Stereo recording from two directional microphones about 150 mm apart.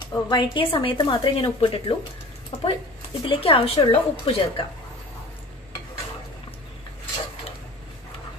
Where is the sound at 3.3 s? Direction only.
40° left (ahead or behind).